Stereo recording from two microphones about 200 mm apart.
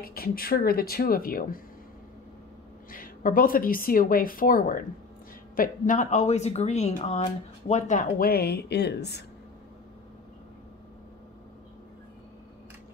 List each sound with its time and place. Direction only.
0.0 s speech: 50° left (ahead or behind)
2.9 s speech: 45° left (ahead or behind)